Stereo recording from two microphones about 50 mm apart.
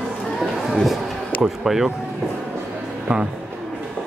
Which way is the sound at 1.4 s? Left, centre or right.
Centre.